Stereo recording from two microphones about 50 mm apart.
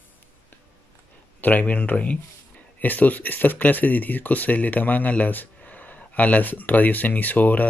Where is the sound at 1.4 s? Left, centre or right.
Left.